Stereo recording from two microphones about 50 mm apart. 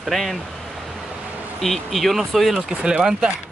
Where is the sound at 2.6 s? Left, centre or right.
Centre.